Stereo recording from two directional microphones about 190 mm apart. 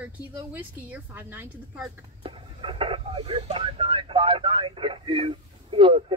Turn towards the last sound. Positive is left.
turn(degrees=-25)  # may be behind; listen again after turning